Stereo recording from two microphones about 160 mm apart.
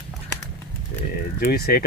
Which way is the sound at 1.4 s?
70° left (ahead or behind).